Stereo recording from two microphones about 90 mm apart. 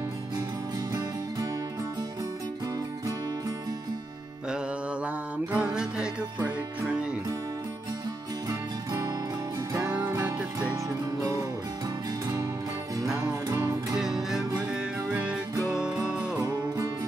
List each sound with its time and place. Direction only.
5.0 s music: 15° right (ahead or behind)
8.5 s music: 40° right (ahead or behind)
13.2 s music: 45° right (ahead or behind)
13.9 s music: 5° right (ahead or behind)
16.3 s music: 45° right (ahead or behind)